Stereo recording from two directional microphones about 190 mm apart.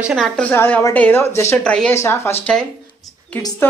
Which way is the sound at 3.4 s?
20° left (ahead or behind).